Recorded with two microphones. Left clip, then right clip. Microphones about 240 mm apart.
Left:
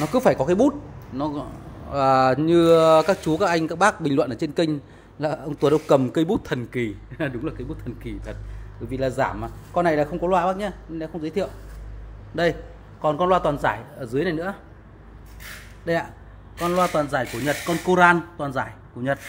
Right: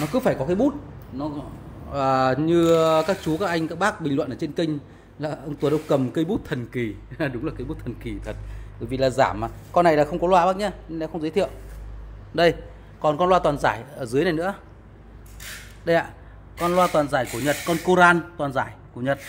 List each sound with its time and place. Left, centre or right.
0.0 s a man's voice: centre
0.7 s a man's voice: left
1.9 s a man's voice: centre
7.2 s speech: centre
7.5 s a man's voice: right
13.0 s speech: centre
15.4 s a sound: centre
16.7 s speech: centre